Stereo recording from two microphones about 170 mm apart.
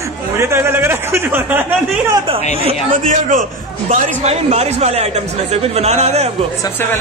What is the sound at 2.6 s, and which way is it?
A man's voice, 50° right (ahead or behind).